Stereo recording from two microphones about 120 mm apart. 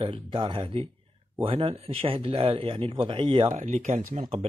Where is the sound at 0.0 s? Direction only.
40° right (ahead or behind).